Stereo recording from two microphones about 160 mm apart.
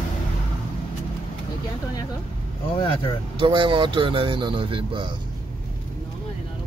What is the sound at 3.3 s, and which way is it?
Speech, 30° right (ahead or behind).